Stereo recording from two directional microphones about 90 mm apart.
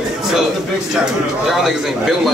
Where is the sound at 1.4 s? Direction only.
5° right (ahead or behind).